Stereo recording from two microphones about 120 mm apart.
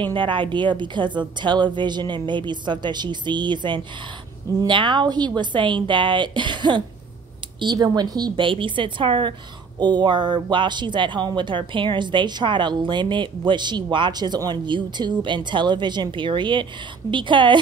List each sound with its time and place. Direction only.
0.0 s a woman's voice: 45° right (ahead or behind)
8.5 s a woman's voice: 45° right (ahead or behind)